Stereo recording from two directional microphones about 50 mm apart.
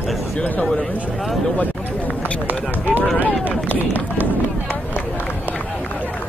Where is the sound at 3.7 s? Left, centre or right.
Left.